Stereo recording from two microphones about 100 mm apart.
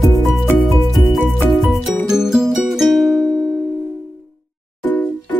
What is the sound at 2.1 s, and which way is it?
Music, 5° right (ahead or behind).